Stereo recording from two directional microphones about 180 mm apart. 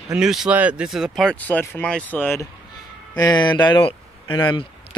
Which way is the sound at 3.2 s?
25° left (ahead or behind).